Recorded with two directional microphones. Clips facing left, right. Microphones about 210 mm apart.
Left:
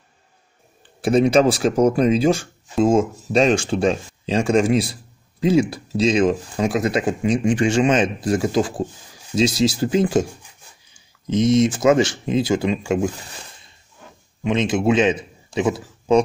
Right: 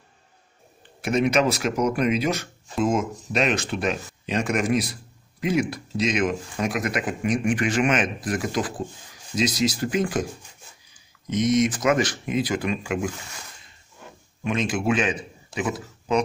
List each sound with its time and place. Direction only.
1.0 s speech: 30° left (ahead or behind)
14.4 s a man's voice: 25° left (ahead or behind)